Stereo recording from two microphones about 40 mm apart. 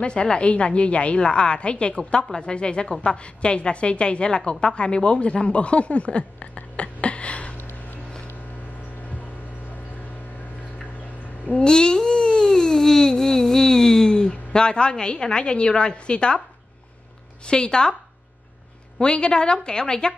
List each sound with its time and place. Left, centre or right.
0.0 s a woman's voice: left
11.6 s a sound: centre
17.5 s a woman's voice: left
18.9 s a woman's voice: left